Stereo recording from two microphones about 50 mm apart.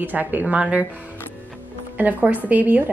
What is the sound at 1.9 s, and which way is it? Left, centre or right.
Speech, right.